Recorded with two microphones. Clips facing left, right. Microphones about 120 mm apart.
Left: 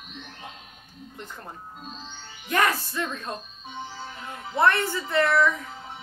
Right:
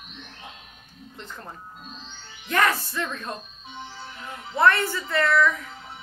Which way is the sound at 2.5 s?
15° left (ahead or behind).